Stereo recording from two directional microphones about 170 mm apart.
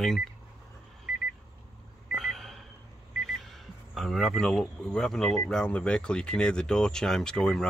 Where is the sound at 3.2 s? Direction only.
Centre (ahead or behind).